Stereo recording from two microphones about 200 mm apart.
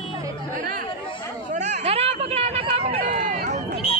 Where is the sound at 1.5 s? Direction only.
35° right (ahead or behind).